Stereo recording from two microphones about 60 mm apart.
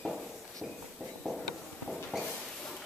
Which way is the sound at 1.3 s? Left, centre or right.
Centre.